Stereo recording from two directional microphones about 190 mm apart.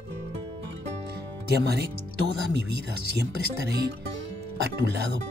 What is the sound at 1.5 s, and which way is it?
Speech, 60° right (ahead or behind).